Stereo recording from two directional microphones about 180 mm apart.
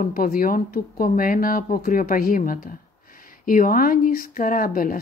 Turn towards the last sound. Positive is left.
turn(degrees=50)  # may be behind; listen again after turning